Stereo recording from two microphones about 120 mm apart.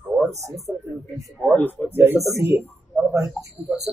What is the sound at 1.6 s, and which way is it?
Speech, 15° left (ahead or behind).